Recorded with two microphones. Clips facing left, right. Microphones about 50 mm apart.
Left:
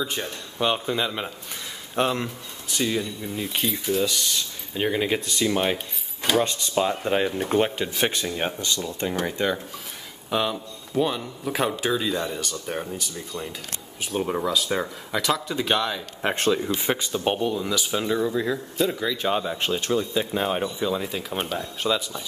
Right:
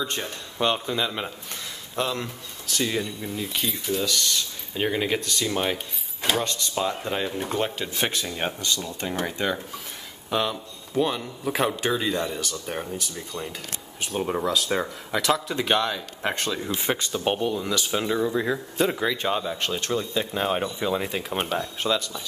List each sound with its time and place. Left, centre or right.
0.0 s speech: centre
2.0 s speech: left
2.2 s speech: centre
2.9 s speech: centre
3.3 s speech: centre
7.9 s speech: centre
18.3 s a man's voice: centre
19.3 s speech: centre
20.8 s speech: centre
21.1 s speech: centre
21.8 s speech: centre